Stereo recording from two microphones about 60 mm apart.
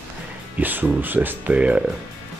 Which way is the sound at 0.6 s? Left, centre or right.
Right.